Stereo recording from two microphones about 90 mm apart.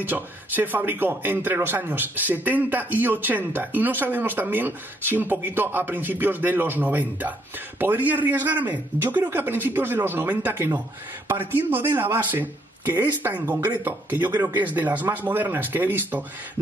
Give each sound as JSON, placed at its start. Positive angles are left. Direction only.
{"t": 0.0, "sound": "a man's voice", "side_deg": -20}